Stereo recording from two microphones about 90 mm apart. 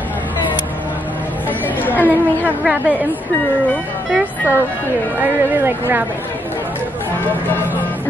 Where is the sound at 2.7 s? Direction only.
15° right (ahead or behind).